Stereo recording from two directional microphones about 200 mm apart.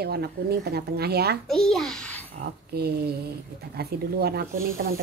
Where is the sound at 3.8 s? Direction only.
50° right (ahead or behind).